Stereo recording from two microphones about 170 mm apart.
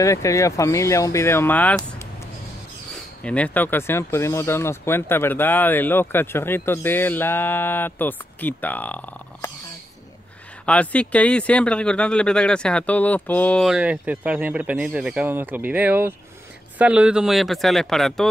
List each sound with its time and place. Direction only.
0.0 s speech: 20° left (ahead or behind)
3.3 s speech: 10° left (ahead or behind)
10.6 s speech: 10° left (ahead or behind)
13.7 s speech: 5° right (ahead or behind)